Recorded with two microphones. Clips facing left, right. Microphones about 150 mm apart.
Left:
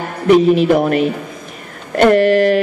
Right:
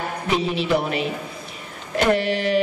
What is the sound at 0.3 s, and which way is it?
A man's voice, 50° left (ahead or behind).